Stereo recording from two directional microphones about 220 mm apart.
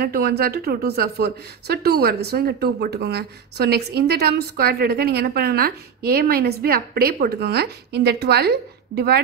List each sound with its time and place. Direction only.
0.0 s speech: 45° right (ahead or behind)